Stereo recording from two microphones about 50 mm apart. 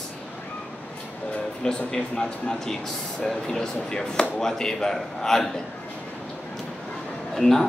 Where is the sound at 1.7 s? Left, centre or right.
Centre.